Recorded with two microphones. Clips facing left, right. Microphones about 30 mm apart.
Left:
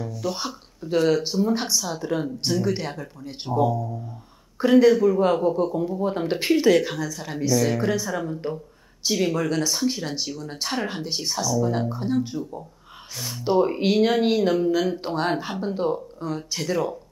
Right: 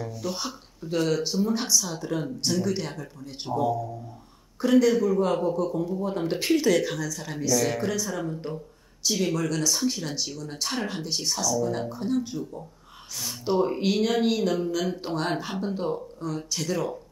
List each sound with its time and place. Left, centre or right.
0.0 s speech: centre
0.3 s speech: centre
3.4 s speech: centre
4.6 s speech: left
5.9 s speech: left; by 17.0 s centre